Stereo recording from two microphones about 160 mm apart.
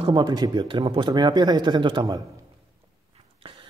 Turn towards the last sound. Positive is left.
turn(degrees=-35)  # may be behind; listen again after turning